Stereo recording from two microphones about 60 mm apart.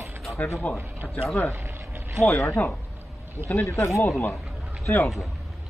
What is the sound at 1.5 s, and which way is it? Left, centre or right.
Vehicle, right.